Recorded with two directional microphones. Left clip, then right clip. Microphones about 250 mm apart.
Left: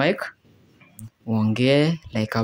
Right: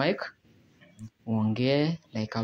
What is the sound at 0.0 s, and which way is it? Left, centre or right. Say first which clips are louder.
Speech: left 6 dB; centre.